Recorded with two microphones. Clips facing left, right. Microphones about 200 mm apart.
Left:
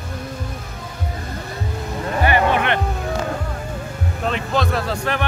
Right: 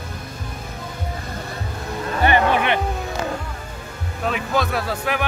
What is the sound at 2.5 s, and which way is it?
Music, 10° right (ahead or behind).